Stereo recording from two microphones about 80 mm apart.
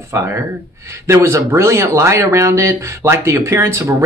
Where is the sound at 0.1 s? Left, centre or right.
Right.